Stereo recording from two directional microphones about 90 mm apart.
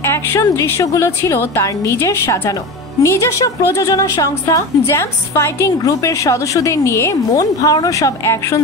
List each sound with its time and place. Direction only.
0.0 s a woman's voice: 30° left (ahead or behind)